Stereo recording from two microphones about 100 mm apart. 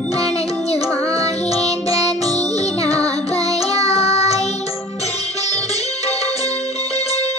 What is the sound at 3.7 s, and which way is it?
Child singing, 90° left.